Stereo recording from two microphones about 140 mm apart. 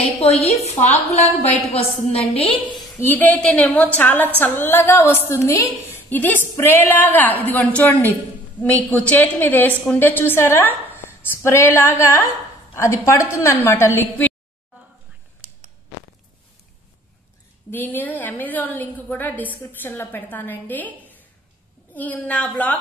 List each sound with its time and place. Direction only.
0.2 s a woman's voice: 45° left (ahead or behind)
3.0 s a woman's voice: 15° left (ahead or behind)
17.6 s a woman's voice: 15° left (ahead or behind)